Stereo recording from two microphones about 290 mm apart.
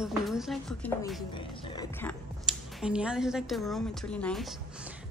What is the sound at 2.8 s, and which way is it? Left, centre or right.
A woman's voice, centre.